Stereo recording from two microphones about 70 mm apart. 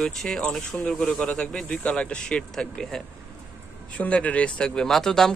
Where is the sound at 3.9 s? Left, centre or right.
Centre.